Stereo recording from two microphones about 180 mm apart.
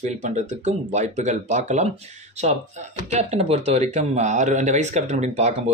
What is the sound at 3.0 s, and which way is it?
Speech, 35° right (ahead or behind).